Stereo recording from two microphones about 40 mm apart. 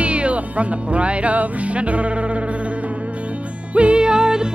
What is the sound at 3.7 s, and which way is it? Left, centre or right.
Music, right.